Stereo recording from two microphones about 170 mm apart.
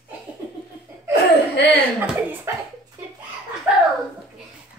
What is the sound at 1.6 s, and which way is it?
Chuckle, 90° left.